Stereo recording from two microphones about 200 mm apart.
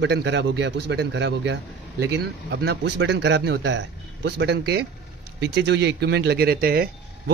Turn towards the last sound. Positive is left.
turn(degrees=-50)  # may be behind; listen again after turning